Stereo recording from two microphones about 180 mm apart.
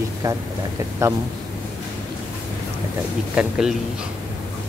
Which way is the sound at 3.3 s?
5° right (ahead or behind).